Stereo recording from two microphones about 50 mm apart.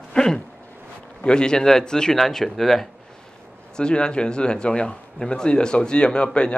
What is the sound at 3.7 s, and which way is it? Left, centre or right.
Speech, centre.